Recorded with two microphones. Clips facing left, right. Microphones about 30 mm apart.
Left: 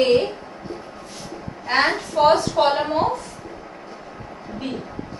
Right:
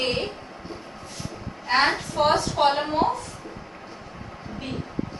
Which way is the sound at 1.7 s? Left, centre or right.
Centre.